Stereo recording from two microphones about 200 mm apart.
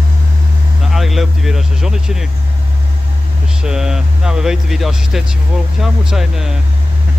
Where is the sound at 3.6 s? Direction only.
5° right (ahead or behind).